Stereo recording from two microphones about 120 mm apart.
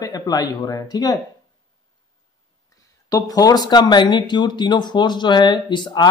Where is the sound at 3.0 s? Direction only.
30° left (ahead or behind).